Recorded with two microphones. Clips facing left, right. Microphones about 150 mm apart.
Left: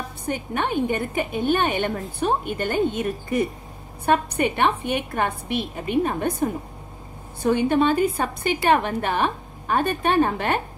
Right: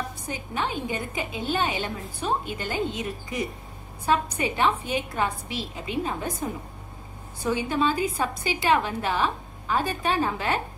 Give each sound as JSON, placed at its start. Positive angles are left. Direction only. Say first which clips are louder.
{"t": 0.3, "sound": "a woman's voice", "louder": "left 6 dB", "side_deg": 55}